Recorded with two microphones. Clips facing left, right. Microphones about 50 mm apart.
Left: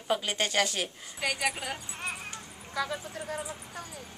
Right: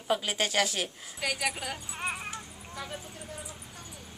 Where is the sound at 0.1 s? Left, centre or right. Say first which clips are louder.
Even; centre.